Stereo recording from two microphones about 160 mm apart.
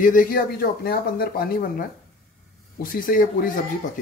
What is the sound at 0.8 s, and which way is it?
Speech, 70° left (ahead or behind).